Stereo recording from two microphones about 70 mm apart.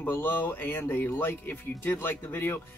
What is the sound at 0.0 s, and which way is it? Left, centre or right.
Speech, left.